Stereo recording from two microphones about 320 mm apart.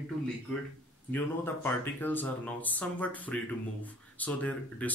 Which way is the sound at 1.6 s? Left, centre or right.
Centre.